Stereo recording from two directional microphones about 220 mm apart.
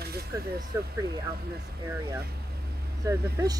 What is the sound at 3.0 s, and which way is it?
Speech, 15° right (ahead or behind).